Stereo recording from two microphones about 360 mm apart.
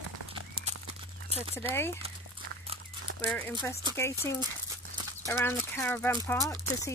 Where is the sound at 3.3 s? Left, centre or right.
Centre.